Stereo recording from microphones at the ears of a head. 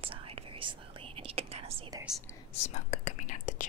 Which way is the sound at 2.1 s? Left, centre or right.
Left.